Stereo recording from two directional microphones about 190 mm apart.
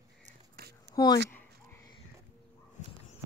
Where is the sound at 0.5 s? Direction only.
55° right (ahead or behind).